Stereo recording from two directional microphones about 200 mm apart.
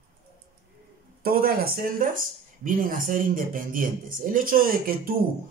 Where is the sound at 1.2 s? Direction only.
45° right (ahead or behind).